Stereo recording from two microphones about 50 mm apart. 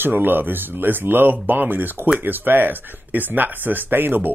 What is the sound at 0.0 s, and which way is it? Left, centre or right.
Speech, right.